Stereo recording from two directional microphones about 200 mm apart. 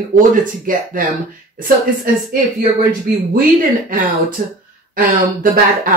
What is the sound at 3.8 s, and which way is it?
Speech, 45° right (ahead or behind).